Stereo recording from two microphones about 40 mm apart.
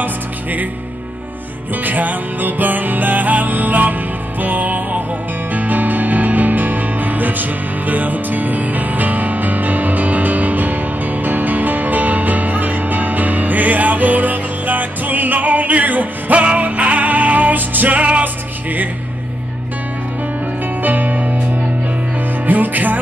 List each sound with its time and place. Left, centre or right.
0.0 s music: right
1.8 s music: right
20.8 s music: right
22.5 s music: right